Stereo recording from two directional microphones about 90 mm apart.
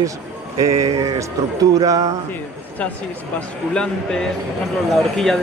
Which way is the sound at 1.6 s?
40° right (ahead or behind).